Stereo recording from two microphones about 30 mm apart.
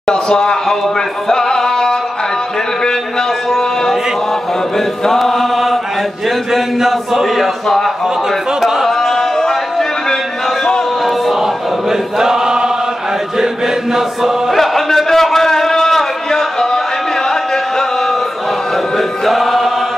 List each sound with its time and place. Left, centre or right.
0.0 s speech: left
1.3 s music: centre
4.7 s chant: centre
5.2 s chant: centre
7.6 s chant: centre
8.5 s a sound: centre
8.8 s music: centre
11.9 s choir: centre
14.5 s a sound: centre
18.9 s choir: centre